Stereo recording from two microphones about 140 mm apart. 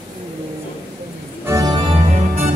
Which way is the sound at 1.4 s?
25° right (ahead or behind).